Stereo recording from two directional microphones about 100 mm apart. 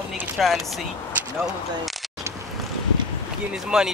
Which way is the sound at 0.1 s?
Centre (ahead or behind).